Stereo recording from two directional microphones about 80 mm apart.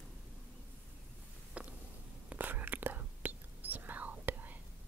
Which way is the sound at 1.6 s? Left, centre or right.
Centre.